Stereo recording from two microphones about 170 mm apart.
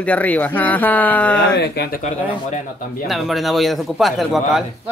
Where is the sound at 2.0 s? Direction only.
45° left (ahead or behind).